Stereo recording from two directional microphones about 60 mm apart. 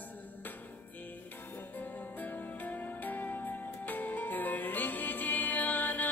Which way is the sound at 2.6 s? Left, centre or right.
Left.